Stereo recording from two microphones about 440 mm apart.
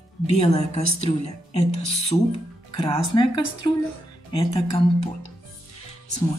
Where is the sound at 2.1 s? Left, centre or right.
Centre.